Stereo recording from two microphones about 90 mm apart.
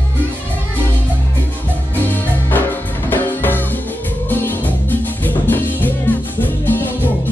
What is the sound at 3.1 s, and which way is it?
Music, 20° left (ahead or behind).